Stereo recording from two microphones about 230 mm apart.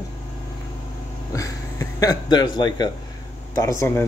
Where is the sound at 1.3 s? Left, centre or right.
Centre.